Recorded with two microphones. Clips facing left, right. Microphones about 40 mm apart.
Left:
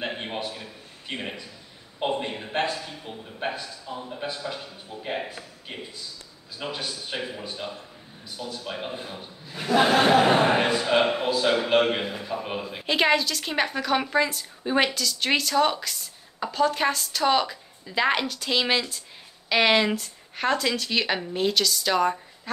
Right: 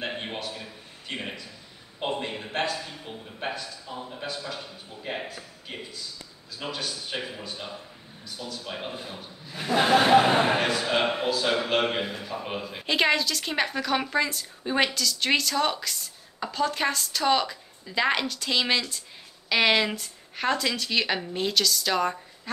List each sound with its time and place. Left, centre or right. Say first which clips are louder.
0.0 s a sound: left 1 dB; centre
0.6 s a man's voice: even; centre
4.3 s a man's voice: left 2 dB; centre
7.2 s a man's voice: left 3 dB; centre
8.6 s a man's voice: left 2 dB; centre